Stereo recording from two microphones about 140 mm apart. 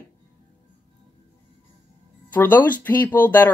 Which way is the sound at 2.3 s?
10° left (ahead or behind).